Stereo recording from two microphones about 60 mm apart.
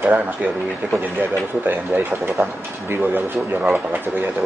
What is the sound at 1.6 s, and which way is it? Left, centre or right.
Speech, right.